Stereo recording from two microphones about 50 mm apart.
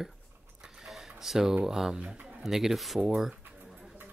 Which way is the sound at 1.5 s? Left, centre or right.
Centre.